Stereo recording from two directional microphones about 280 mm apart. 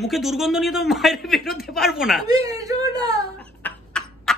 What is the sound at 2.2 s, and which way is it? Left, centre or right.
A woman's voice, centre.